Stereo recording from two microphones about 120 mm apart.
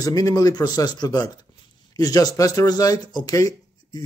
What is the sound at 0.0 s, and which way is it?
Speech, 30° left (ahead or behind).